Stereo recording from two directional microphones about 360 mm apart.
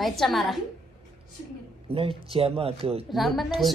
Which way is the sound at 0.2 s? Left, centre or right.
Centre.